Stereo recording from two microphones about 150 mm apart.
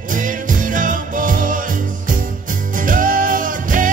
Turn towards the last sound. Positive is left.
turn(degrees=-60)  # may be behind; listen again after turning